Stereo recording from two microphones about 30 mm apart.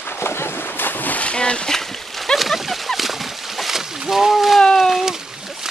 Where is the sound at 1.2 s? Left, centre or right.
Left.